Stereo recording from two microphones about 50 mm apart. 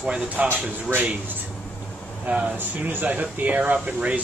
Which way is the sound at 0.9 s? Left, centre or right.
Right.